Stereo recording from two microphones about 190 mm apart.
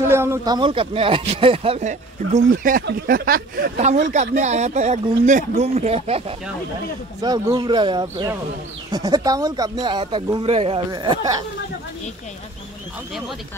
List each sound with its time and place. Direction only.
0.0 s speech: 15° right (ahead or behind)
0.6 s speech: 25° right (ahead or behind)
2.6 s speech: 55° right (ahead or behind); by 6.3 s 30° right (ahead or behind)
7.2 s speech: 20° right (ahead or behind)